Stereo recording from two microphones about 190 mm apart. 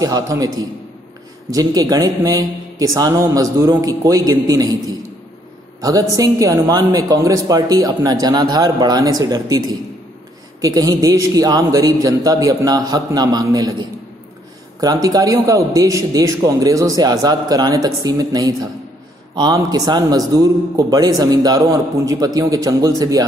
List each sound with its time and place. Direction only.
0.0 s a man's voice: 20° right (ahead or behind)
1.5 s a man's voice: 20° right (ahead or behind)
5.8 s a man's voice: 20° right (ahead or behind)